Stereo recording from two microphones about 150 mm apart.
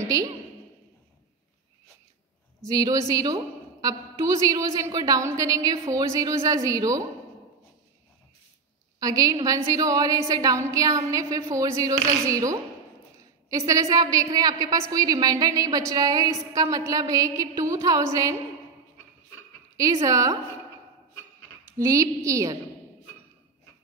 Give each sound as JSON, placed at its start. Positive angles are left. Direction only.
{"t": 0.0, "sound": "a woman's voice", "side_deg": -20}
{"t": 2.7, "sound": "a woman's voice", "side_deg": -25}
{"t": 9.0, "sound": "a woman's voice", "side_deg": -25}
{"t": 19.8, "sound": "a woman's voice", "side_deg": -25}
{"t": 21.7, "sound": "a woman's voice", "side_deg": -20}